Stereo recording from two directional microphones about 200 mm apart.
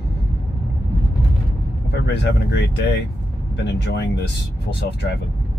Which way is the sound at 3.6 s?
60° left (ahead or behind).